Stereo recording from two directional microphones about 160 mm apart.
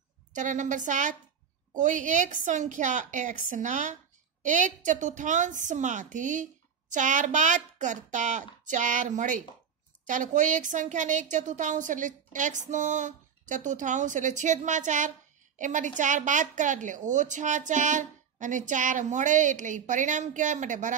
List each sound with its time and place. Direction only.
0.3 s a woman's voice: 50° right (ahead or behind)